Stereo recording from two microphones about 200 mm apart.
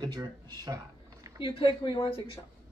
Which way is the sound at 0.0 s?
20° right (ahead or behind).